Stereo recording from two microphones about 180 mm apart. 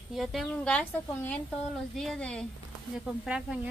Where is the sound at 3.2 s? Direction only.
5° right (ahead or behind).